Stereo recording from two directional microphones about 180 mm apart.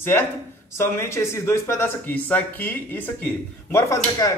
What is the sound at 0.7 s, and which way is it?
A man's voice, 15° left (ahead or behind).